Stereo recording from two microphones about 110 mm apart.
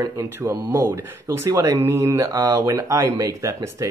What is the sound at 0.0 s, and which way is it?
Speech, 30° right (ahead or behind).